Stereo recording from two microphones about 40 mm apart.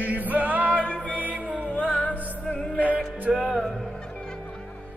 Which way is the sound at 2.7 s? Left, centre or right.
Right.